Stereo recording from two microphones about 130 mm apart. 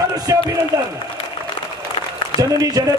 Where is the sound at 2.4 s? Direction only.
30° right (ahead or behind).